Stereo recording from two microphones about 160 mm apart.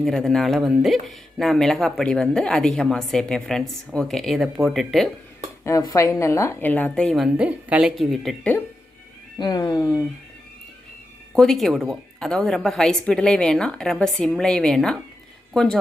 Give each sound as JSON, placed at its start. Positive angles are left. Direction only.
{"t": 0.0, "sound": "speech", "side_deg": 0}
{"t": 5.6, "sound": "a woman's voice", "side_deg": 20}
{"t": 7.3, "sound": "speech", "side_deg": -5}
{"t": 9.4, "sound": "speech", "side_deg": 25}
{"t": 11.3, "sound": "speech", "side_deg": 0}